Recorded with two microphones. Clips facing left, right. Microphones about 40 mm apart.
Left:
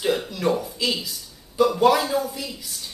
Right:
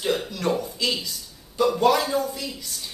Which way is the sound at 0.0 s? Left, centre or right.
Centre.